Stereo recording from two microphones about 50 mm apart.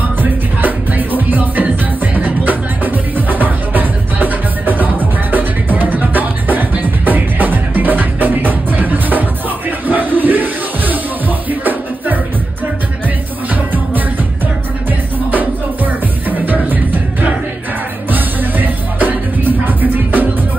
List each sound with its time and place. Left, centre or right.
0.2 s music: right
15.3 s music: right